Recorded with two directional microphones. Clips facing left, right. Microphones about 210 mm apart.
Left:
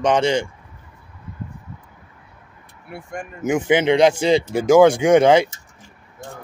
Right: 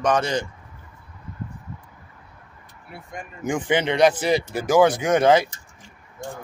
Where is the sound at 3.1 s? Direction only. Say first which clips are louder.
Left 5 dB; 45° left (ahead or behind).